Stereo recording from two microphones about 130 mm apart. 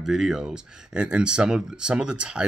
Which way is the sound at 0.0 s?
5° right (ahead or behind).